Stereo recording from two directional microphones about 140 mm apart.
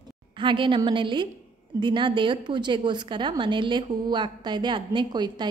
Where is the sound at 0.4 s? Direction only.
35° right (ahead or behind).